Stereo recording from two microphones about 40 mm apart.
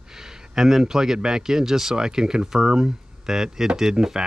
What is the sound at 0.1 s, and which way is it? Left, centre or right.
A man's voice, centre.